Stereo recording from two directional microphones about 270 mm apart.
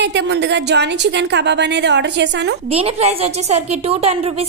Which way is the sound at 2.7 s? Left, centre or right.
Right.